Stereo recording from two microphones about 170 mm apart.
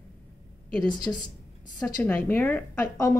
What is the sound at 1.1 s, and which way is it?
A woman's voice, 10° left (ahead or behind).